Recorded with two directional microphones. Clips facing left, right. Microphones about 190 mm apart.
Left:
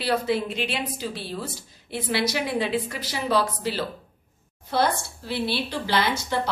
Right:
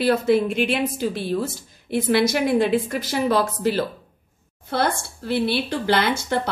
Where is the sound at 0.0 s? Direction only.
50° right (ahead or behind).